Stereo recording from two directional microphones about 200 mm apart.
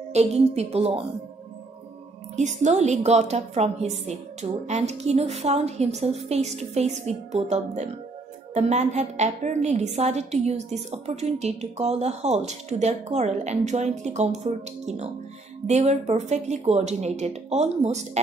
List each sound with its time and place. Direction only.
0.1 s a woman's voice: 35° right (ahead or behind)
2.3 s a woman's voice: 35° right (ahead or behind)